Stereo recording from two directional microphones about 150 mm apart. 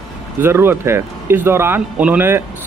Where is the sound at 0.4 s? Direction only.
15° right (ahead or behind).